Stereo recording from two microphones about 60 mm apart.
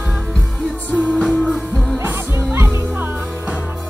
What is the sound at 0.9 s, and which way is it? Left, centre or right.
Music, centre.